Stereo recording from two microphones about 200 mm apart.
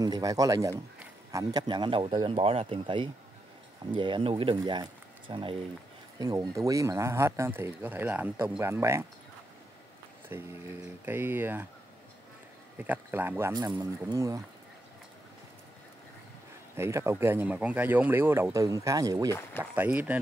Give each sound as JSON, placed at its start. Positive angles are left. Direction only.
{"t": 0.0, "sound": "a man's voice", "side_deg": -20}
{"t": 10.3, "sound": "speech", "side_deg": -15}
{"t": 12.7, "sound": "speech", "side_deg": -10}
{"t": 16.7, "sound": "speech", "side_deg": -10}